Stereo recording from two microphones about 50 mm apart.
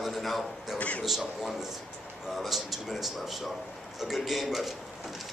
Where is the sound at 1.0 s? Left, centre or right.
Centre.